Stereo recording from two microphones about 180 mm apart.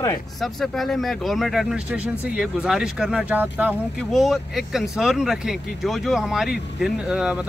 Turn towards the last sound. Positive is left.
turn(degrees=-5)  # may be behind; listen again after turning